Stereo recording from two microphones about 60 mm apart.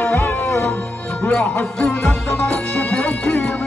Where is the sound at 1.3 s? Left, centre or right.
Centre.